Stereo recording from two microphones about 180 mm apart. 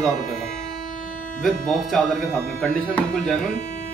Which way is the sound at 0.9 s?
45° left (ahead or behind).